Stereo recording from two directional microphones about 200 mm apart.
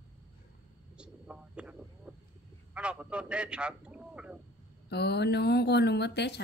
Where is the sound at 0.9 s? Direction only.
5° right (ahead or behind).